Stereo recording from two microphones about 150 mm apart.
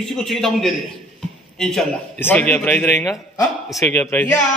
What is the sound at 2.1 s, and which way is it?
A man's voice, 10° left (ahead or behind).